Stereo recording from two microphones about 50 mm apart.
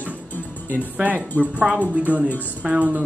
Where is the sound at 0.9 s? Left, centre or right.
Right.